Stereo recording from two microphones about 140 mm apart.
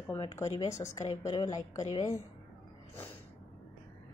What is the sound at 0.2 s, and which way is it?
A woman's voice, 25° left (ahead or behind).